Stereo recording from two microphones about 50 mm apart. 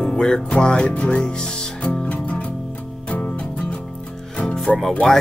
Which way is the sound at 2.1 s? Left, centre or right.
Left.